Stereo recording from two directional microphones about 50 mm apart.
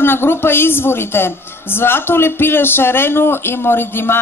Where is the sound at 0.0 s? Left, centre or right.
Left.